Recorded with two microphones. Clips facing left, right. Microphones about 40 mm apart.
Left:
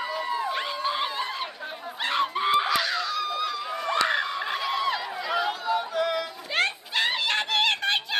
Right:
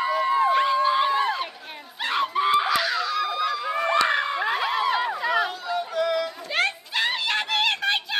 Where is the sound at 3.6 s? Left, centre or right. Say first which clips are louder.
Right 4 dB; right.